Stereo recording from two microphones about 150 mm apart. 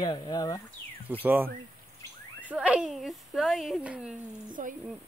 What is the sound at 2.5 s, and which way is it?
Speech, 5° right (ahead or behind).